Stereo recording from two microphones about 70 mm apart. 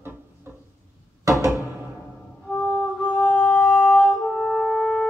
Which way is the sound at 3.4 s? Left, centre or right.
Centre.